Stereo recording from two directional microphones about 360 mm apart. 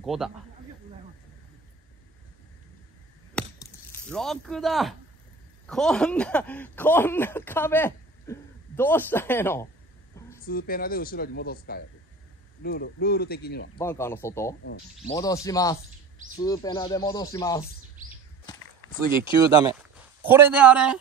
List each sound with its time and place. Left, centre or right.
0.0 s speech: centre
3.3 s chop: centre
5.7 s speech: centre
10.4 s speech: left
13.7 s speech: centre
20.2 s speech: centre